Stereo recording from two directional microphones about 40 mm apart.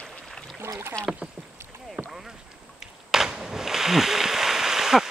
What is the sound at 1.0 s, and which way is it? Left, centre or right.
Speech, left.